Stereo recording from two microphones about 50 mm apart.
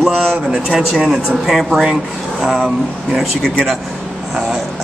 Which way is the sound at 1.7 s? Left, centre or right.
Centre.